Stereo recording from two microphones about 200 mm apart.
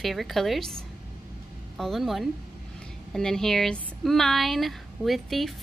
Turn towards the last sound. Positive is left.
turn(degrees=0)  # may be behind; listen again after turning